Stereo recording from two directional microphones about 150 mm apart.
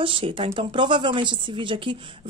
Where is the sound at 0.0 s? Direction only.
35° right (ahead or behind).